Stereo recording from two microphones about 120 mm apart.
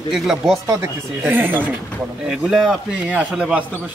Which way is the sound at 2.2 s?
5° right (ahead or behind).